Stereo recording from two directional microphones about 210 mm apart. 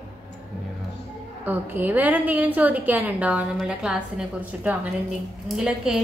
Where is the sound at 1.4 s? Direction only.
10° right (ahead or behind).